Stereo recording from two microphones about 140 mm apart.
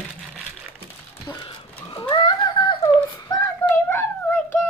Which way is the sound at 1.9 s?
35° left (ahead or behind).